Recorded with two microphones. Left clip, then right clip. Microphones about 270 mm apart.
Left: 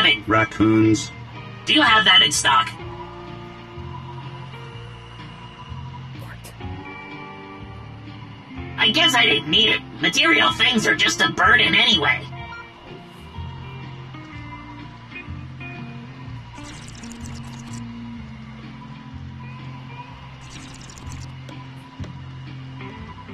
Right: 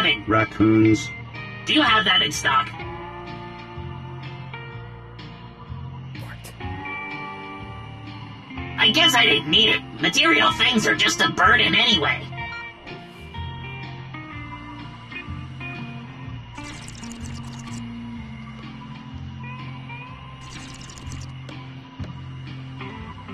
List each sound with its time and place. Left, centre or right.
0.0 s speech: centre
6.6 s music: right
8.7 s a woman's voice: centre
15.1 s music: centre